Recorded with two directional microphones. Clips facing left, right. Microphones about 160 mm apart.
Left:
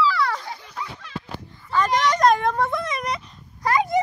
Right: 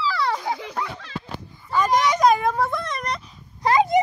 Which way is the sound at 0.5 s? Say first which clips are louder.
Right 6 dB; 80° right.